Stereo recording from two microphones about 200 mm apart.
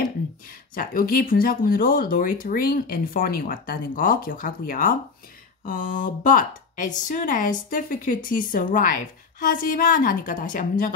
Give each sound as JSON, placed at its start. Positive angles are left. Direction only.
{"t": 0.7, "sound": "a woman's voice", "side_deg": 45}